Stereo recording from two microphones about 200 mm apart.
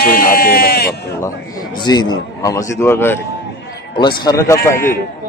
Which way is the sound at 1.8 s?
20° left (ahead or behind).